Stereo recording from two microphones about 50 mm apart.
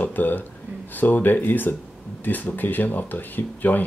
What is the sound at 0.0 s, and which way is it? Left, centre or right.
Speech, left.